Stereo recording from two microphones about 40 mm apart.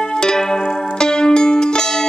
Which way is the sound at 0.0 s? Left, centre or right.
Centre.